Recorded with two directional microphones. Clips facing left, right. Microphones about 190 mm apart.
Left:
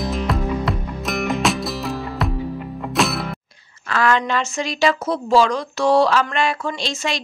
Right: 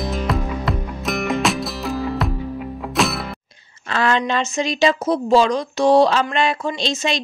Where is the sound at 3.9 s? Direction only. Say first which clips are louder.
Left 1 dB; 25° right (ahead or behind).